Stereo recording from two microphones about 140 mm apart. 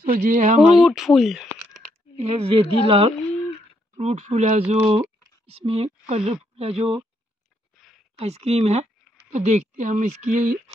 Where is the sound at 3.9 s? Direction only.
55° right (ahead or behind).